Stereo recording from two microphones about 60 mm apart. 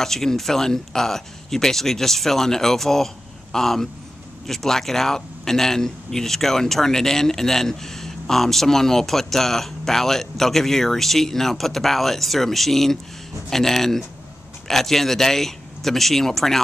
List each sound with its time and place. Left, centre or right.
0.0 s a man's voice: centre